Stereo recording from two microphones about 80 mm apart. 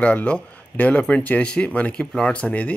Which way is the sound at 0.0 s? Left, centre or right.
Centre.